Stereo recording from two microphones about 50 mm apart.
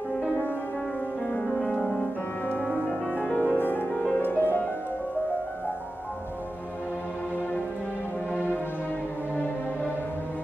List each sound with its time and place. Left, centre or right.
3.3 s music: left